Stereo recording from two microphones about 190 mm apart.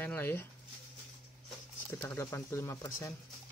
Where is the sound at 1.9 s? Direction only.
15° left (ahead or behind).